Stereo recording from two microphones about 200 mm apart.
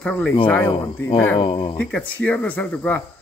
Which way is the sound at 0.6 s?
30° left (ahead or behind).